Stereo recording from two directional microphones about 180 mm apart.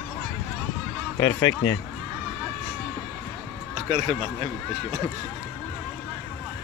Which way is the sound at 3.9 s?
35° right (ahead or behind).